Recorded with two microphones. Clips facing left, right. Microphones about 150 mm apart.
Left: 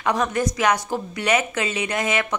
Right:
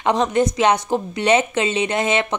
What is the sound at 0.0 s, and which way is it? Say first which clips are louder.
A woman's voice: right 4 dB; 25° right (ahead or behind).